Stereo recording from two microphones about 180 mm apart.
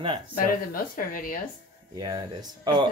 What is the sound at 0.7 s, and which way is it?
Speech, 50° left (ahead or behind).